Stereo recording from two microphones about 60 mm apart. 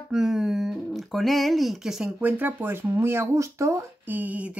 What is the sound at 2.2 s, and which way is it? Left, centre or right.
Speech, right.